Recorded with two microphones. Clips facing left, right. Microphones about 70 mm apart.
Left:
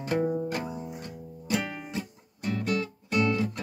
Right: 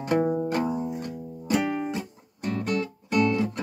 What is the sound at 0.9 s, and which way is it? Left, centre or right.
Music, centre.